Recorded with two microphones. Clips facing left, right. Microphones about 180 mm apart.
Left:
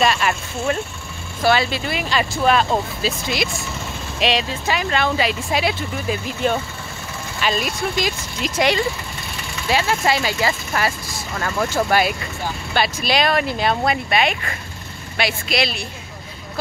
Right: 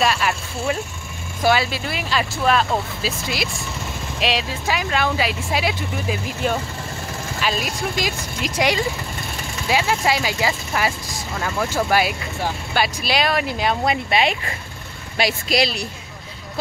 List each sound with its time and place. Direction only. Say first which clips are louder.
0.0 s speech: left 2 dB; centre (ahead or behind); by 11.2 s 15° right (ahead or behind)
11.3 s speech: left 1 dB; centre (ahead or behind)
14.1 s speech: even; 25° right (ahead or behind)
15.1 s speech: right 2 dB; 40° right (ahead or behind)